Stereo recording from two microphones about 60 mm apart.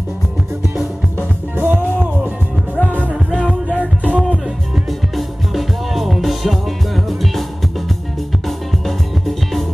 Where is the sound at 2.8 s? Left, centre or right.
Left.